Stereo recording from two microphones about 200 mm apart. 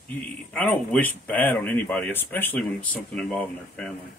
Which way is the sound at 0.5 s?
10° left (ahead or behind).